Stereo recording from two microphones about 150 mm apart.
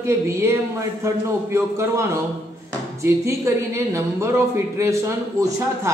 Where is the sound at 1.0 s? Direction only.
20° right (ahead or behind).